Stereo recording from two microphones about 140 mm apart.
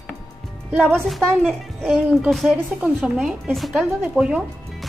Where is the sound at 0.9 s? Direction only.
5° left (ahead or behind).